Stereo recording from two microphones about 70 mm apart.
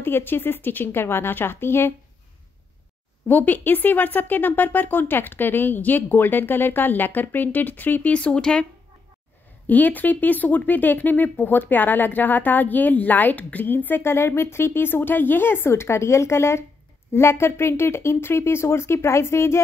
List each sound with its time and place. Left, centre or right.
0.0 s speech: left
3.3 s speech: left
9.7 s speech: left